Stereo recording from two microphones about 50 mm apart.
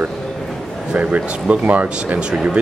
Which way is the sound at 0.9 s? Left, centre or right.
Right.